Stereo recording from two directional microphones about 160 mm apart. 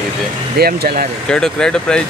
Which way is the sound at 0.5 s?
75° right (ahead or behind).